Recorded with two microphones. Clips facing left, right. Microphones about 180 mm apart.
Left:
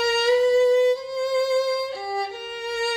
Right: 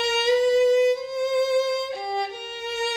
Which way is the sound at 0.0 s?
20° right (ahead or behind).